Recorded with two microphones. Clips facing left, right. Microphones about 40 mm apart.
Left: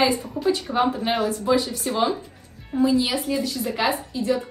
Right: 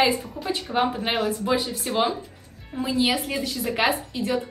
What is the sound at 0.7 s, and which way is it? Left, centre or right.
A woman's voice, centre.